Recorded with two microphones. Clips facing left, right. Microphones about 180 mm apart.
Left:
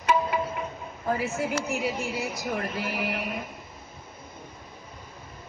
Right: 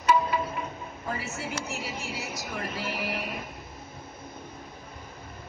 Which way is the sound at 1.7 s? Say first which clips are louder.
Left 7 dB; 55° left (ahead or behind).